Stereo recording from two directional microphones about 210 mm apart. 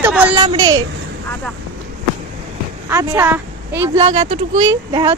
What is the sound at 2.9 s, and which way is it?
A woman's voice, 15° right (ahead or behind).